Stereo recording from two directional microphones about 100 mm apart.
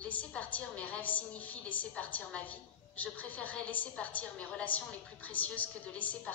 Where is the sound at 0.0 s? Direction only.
15° left (ahead or behind).